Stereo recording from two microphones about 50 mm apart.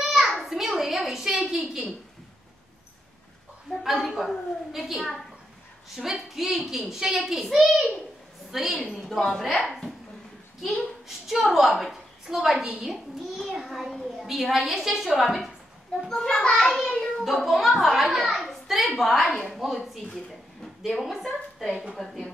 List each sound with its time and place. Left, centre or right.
0.0 s a sound: centre
3.8 s a child's voice: centre
9.7 s a child's voice: centre
16.1 s a child's voice: centre
16.8 s a child's voice: centre
17.2 s a child's voice: centre